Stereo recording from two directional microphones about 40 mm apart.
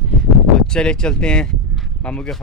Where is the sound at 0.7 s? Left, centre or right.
Left.